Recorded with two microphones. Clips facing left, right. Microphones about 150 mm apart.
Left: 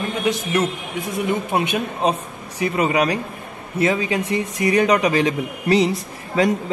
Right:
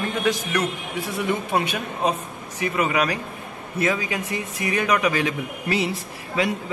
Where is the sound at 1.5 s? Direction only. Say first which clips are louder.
Left 3 dB; 20° left (ahead or behind).